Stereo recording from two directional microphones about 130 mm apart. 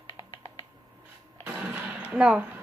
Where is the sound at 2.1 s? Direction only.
10° right (ahead or behind).